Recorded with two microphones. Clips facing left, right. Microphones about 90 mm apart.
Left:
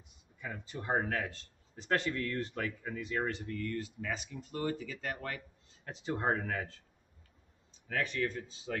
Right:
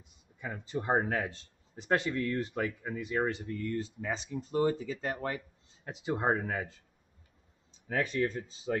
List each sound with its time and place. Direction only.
0.4 s speech: 20° right (ahead or behind)
5.9 s speech: 15° right (ahead or behind)
8.1 s speech: 30° right (ahead or behind)
8.7 s speech: 20° right (ahead or behind)